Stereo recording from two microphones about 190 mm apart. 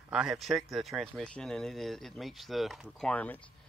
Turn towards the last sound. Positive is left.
turn(degrees=10)  # may be behind; listen again after turning